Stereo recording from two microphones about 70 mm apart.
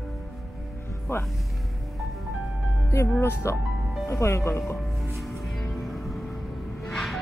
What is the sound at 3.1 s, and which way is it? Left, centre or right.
Speech, left.